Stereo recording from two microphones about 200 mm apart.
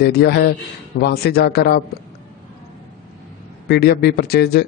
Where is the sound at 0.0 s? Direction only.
55° left (ahead or behind).